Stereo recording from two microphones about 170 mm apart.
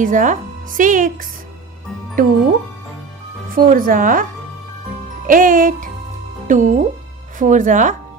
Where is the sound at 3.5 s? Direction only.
55° right (ahead or behind).